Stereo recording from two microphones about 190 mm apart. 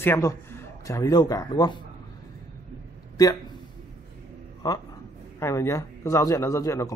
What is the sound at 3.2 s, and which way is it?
Speech, 20° left (ahead or behind).